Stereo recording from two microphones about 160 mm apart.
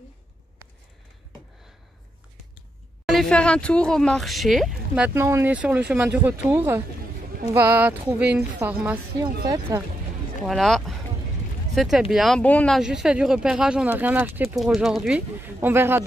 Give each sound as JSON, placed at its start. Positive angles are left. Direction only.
{"t": 3.1, "sound": "speech", "side_deg": 5}
{"t": 9.4, "sound": "speech", "side_deg": -20}
{"t": 10.4, "sound": "speech", "side_deg": 0}
{"t": 14.6, "sound": "speech", "side_deg": 0}